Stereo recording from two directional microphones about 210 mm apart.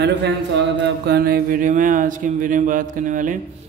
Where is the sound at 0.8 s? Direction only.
50° right (ahead or behind).